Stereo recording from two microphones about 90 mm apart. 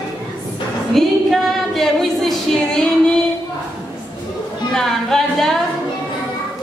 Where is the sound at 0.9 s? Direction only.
Centre (ahead or behind).